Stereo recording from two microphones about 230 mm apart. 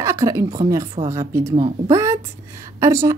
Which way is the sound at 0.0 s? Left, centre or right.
Centre.